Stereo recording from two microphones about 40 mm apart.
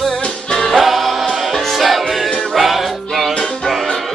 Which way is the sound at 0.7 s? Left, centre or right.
Centre.